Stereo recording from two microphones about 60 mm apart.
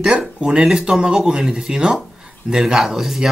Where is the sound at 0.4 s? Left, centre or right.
Centre.